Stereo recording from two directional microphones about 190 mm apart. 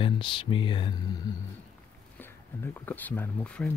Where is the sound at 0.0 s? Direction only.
25° left (ahead or behind).